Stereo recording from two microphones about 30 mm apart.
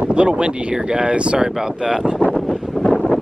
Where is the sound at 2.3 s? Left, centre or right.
Centre.